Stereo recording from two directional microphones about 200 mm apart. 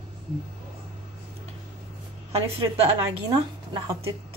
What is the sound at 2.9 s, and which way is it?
A woman's voice, 15° right (ahead or behind).